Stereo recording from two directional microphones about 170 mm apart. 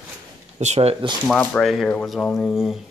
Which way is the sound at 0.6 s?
40° right (ahead or behind).